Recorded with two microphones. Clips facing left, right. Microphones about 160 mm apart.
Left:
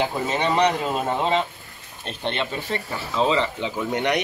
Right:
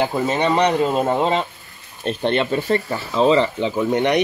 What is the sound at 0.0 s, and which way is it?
Speech, 40° right (ahead or behind).